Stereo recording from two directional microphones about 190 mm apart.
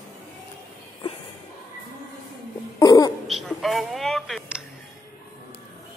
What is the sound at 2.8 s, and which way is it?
Cough, 20° left (ahead or behind).